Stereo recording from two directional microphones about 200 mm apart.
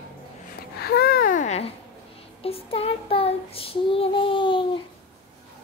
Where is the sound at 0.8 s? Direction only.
50° left (ahead or behind); by 1.7 s 35° left (ahead or behind).